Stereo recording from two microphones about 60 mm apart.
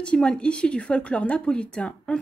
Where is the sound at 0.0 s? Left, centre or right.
Centre.